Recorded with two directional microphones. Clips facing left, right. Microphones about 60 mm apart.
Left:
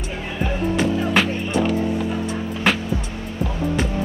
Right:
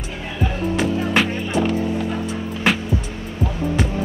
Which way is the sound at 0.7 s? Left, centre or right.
Centre.